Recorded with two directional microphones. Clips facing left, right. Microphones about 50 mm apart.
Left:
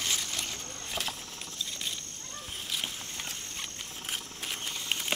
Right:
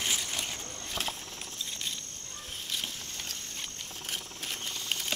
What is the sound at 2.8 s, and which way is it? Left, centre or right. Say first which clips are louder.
Walk: left 2 dB; centre.